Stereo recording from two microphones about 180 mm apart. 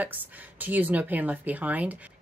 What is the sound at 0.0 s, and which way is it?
A woman's voice, 10° right (ahead or behind).